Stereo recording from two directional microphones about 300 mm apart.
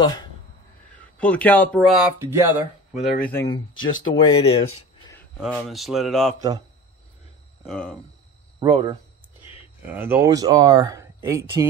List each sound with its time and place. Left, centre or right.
0.9 s speech: centre
3.3 s speech: centre
5.4 s speech: centre
7.6 s speech: centre
8.5 s speech: centre